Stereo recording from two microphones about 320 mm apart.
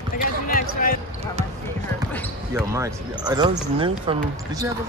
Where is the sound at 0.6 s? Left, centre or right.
Left.